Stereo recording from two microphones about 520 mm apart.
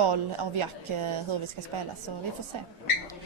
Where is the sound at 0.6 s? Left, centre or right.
Right.